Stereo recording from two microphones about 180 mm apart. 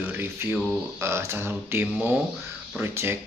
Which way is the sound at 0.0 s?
10° right (ahead or behind).